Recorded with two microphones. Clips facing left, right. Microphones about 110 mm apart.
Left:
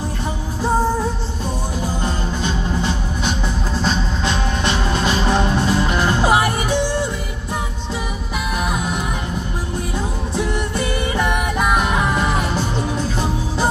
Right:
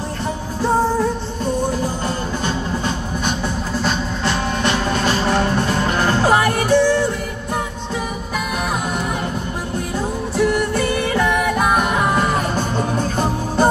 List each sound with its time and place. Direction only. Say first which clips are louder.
2.4 s music: left 1 dB; 50° right (ahead or behind)
4.2 s music: right 1 dB; 20° left (ahead or behind)
10.3 s music: right 6 dB; 20° left (ahead or behind)
12.4 s music: right 1 dB; 50° right (ahead or behind)